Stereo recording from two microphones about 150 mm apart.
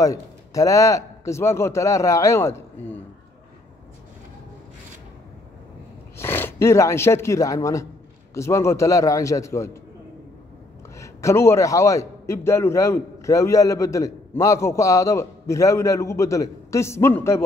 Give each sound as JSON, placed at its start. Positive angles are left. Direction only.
{"t": 0.0, "sound": "a man's voice", "side_deg": 20}
{"t": 6.1, "sound": "a man's voice", "side_deg": 15}
{"t": 11.0, "sound": "a man's voice", "side_deg": 20}